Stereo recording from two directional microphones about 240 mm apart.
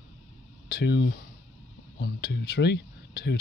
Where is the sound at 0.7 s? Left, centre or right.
Left.